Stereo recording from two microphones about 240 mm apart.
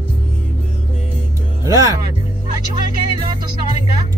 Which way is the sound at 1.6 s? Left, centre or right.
Centre.